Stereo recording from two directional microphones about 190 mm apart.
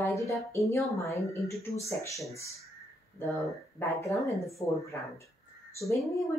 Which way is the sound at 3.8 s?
15° left (ahead or behind).